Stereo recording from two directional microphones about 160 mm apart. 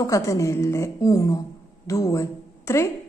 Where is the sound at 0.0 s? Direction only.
20° left (ahead or behind).